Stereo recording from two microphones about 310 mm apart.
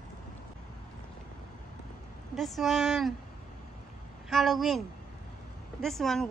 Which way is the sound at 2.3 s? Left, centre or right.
Centre.